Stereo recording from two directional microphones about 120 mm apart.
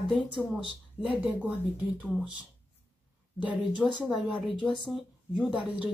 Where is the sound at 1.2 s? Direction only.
15° right (ahead or behind).